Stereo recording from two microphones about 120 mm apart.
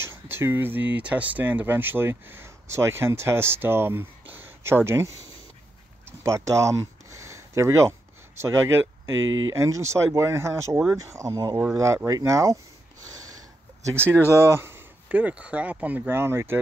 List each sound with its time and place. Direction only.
0.0 s speech: 20° right (ahead or behind)
6.0 s a sound: 25° right (ahead or behind)
8.4 s speech: 20° right (ahead or behind)
13.8 s speech: 20° right (ahead or behind)